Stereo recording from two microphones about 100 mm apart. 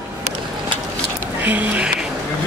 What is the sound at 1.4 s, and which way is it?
Speech, 15° right (ahead or behind).